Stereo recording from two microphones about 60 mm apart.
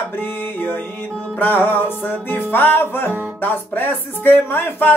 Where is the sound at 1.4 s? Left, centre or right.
Left.